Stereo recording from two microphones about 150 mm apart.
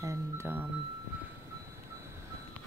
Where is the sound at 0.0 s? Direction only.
20° right (ahead or behind).